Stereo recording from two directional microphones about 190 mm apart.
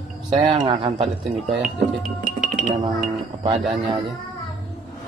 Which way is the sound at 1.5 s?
Centre (ahead or behind).